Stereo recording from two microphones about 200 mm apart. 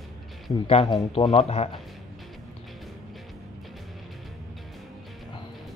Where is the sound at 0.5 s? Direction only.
25° left (ahead or behind).